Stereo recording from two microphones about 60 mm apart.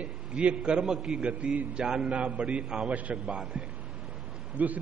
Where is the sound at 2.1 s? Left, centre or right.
Centre.